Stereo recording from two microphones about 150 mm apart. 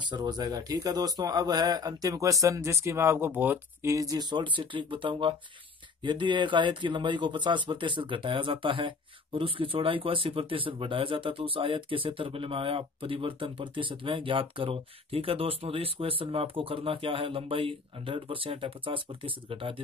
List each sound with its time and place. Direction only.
0.1 s a man's voice: 30° right (ahead or behind)